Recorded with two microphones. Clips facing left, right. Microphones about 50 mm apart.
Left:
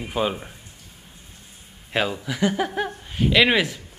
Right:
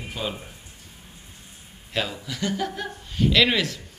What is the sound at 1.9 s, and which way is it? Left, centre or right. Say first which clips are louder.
Speech: left 4 dB; left.